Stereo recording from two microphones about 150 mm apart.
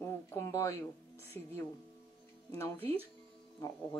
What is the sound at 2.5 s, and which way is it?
Speech, 15° left (ahead or behind).